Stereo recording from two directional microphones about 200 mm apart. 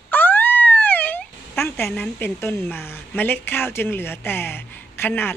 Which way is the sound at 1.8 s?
10° left (ahead or behind).